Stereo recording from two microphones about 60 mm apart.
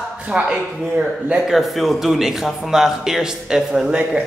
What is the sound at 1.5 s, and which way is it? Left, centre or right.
Speech, centre.